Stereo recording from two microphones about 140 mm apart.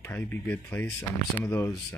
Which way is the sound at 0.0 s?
15° left (ahead or behind).